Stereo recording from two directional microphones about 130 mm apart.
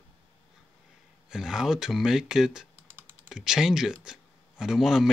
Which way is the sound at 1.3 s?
5° right (ahead or behind).